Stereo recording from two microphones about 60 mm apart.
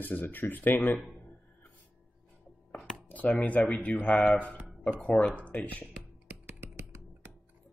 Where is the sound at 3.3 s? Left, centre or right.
Left.